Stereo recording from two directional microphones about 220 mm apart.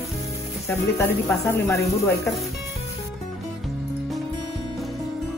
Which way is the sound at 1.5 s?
15° left (ahead or behind).